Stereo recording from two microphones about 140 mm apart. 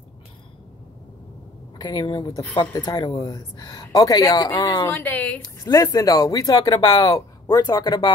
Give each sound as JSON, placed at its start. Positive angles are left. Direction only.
{"t": 1.8, "sound": "speech", "side_deg": 30}
{"t": 4.9, "sound": "speech", "side_deg": 10}
{"t": 5.4, "sound": "speech", "side_deg": 25}